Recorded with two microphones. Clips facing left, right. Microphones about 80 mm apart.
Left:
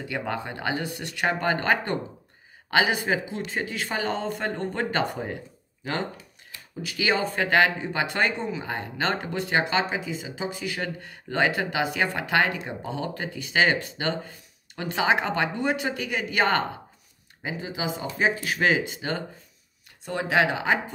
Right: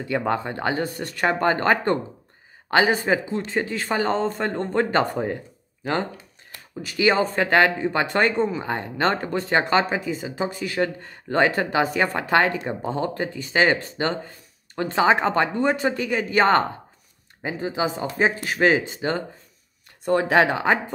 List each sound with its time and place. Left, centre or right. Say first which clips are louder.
0.0 s speech: right 6 dB; right
20.1 s speech: right 5 dB; right